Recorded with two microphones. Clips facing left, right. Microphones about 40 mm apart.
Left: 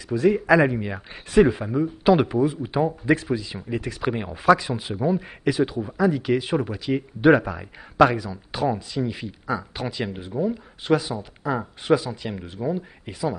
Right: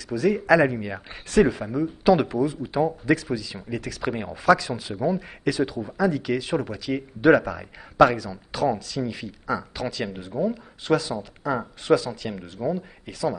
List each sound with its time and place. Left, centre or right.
0.1 s speech: left
0.7 s speech: centre
4.9 s speech: centre